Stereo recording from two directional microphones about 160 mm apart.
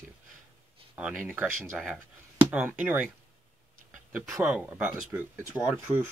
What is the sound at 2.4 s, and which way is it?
Speech, 10° right (ahead or behind).